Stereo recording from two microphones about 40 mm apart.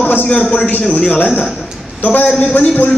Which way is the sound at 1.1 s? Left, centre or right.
Left.